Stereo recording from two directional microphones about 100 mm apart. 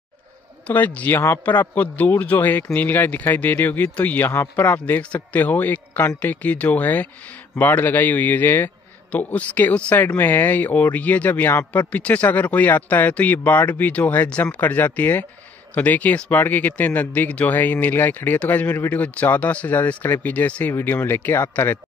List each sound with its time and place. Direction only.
0.7 s a man's voice: 15° left (ahead or behind)